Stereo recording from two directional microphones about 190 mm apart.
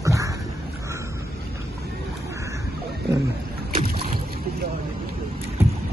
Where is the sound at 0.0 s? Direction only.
15° right (ahead or behind).